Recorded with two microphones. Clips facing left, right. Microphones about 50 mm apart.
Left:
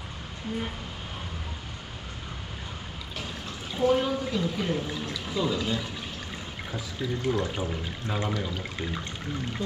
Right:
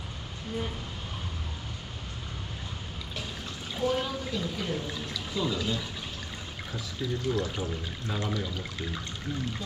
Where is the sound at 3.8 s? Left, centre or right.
Centre.